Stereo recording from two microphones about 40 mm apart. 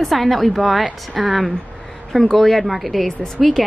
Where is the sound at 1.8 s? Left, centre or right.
Centre.